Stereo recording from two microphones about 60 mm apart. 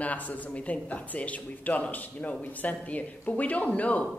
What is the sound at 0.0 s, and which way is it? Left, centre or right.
A woman's voice, left.